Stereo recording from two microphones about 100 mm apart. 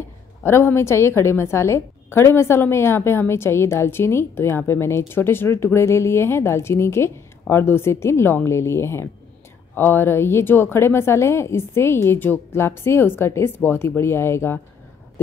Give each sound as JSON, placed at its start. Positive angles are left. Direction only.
{"t": 0.4, "sound": "a woman's voice", "side_deg": 20}